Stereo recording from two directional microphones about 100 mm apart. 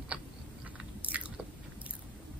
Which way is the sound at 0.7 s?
15° right (ahead or behind).